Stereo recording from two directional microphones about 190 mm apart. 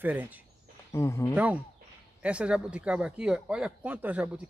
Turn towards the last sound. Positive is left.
turn(degrees=-10)  # may be behind; listen again after turning